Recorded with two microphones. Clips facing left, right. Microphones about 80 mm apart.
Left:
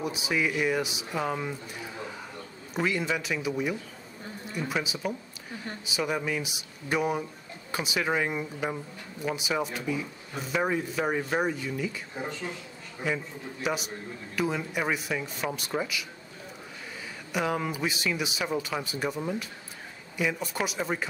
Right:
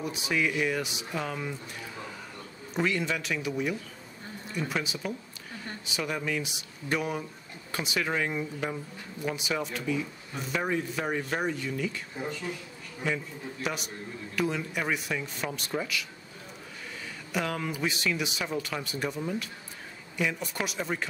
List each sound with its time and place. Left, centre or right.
0.0 s speech: centre
2.7 s speech: centre
5.9 s speech: centre
13.0 s speech: centre
17.3 s speech: centre